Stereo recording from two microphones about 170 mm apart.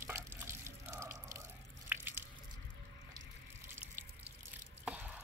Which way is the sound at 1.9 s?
10° right (ahead or behind).